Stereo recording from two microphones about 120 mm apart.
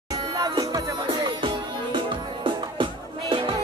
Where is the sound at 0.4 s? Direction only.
35° right (ahead or behind).